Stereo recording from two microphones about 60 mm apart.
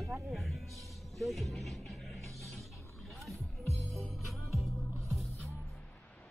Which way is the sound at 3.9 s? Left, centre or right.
Centre.